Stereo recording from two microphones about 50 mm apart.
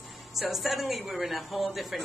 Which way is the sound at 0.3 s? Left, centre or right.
Centre.